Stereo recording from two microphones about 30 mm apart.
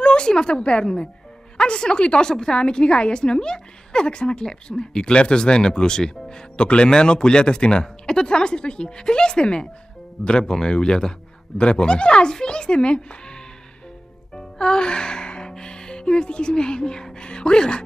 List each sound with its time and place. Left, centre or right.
0.0 s a woman's voice: left
6.5 s a man's voice: left
14.3 s music: left
16.2 s speech: left